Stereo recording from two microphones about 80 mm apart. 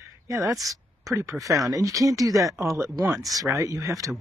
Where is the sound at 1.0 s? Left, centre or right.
Right.